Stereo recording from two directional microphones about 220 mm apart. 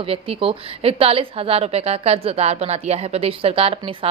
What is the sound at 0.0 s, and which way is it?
A woman's voice, 25° right (ahead or behind).